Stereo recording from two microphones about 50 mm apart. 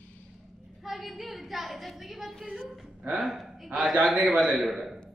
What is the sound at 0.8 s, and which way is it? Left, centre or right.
A woman's voice, centre.